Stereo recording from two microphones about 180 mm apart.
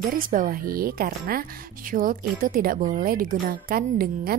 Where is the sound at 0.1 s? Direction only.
50° right (ahead or behind).